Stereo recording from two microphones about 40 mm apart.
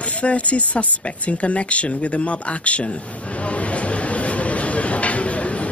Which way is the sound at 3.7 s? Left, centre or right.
Left.